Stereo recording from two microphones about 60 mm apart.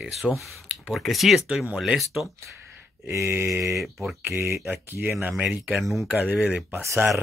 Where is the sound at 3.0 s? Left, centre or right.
Right.